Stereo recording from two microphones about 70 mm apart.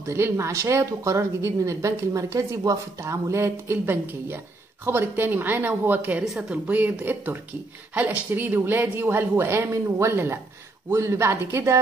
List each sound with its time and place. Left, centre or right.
0.0 s a woman's voice: right